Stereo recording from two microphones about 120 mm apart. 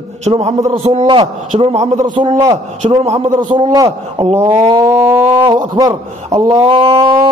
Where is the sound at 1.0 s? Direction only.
50° right (ahead or behind); by 2.0 s 70° right (ahead or behind).